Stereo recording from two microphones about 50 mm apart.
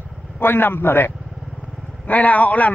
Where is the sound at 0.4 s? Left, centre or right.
Left.